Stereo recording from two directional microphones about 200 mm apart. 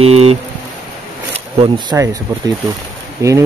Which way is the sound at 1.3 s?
25° right (ahead or behind).